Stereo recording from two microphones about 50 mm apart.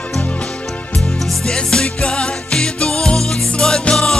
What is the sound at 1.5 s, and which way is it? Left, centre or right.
Music, centre.